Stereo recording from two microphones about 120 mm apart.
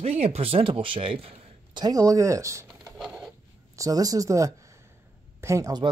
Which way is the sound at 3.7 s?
30° right (ahead or behind).